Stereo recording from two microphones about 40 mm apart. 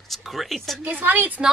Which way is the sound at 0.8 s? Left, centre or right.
Right.